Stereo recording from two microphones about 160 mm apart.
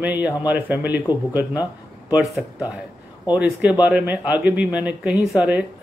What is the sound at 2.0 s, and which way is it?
Speech, 10° right (ahead or behind).